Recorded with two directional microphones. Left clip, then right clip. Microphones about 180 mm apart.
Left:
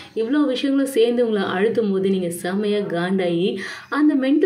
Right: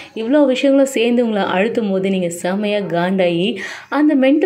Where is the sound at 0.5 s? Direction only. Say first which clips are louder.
Right 8 dB; 15° right (ahead or behind).